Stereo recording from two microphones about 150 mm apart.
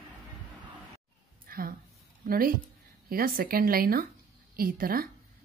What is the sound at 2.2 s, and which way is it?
A woman's voice, 75° right (ahead or behind).